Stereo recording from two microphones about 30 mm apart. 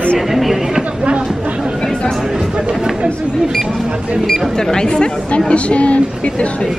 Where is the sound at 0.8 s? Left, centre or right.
Right.